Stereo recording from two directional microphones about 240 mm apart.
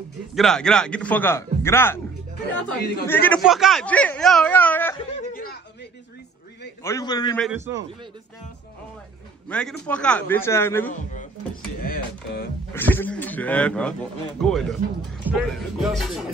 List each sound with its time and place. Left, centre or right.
0.3 s a man's voice: centre
2.8 s speech: left
3.1 s a man's voice: centre
5.3 s a sound: left
6.8 s a man's voice: centre
7.5 s a man's voice: centre
9.5 s a man's voice: centre
10.9 s speech: left
12.7 s a man's voice: centre